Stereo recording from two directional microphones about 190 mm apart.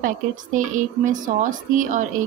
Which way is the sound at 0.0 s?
45° right (ahead or behind).